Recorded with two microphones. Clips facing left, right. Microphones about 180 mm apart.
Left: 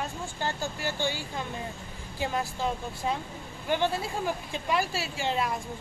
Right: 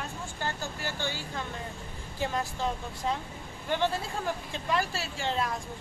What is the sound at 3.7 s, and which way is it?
Speech, 10° left (ahead or behind).